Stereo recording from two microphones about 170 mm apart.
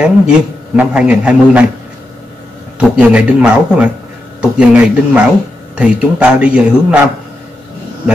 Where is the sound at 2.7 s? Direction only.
5° right (ahead or behind).